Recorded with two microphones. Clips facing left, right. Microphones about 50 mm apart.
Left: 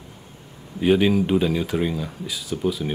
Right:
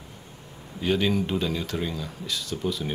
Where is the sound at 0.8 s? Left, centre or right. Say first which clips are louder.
Left 6 dB; centre.